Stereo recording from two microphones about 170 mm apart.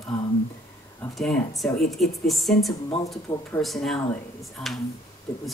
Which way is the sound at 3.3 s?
25° left (ahead or behind).